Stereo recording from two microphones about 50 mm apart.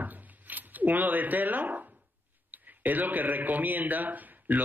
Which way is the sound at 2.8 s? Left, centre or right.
Right.